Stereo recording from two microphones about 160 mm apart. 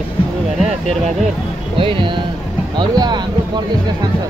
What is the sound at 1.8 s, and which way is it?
Speech, 30° right (ahead or behind).